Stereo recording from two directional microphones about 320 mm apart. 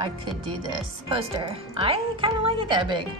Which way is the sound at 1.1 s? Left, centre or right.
Centre.